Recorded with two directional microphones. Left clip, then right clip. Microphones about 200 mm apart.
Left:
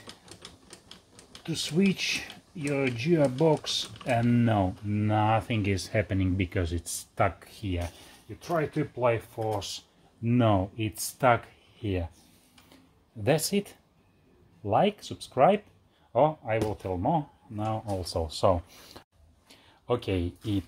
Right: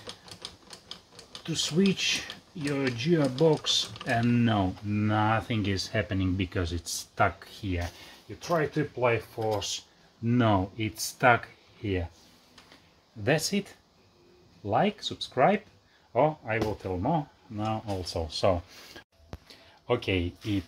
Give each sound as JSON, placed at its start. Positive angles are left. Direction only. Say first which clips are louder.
{"t": 1.4, "sound": "speech", "louder": "right 1 dB", "side_deg": 30}
{"t": 13.2, "sound": "speech", "louder": "left 1 dB", "side_deg": 30}